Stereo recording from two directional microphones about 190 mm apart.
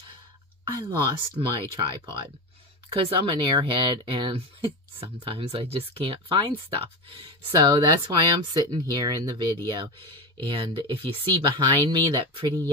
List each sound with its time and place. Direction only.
0.8 s speech: 25° right (ahead or behind)
2.9 s speech: 25° right (ahead or behind)